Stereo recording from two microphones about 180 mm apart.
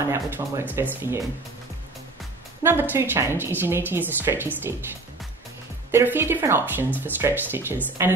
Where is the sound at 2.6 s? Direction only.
10° right (ahead or behind).